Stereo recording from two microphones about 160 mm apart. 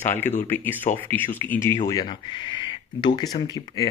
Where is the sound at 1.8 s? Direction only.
25° left (ahead or behind).